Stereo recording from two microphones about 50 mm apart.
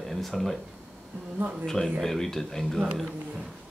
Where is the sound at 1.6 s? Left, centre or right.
Centre.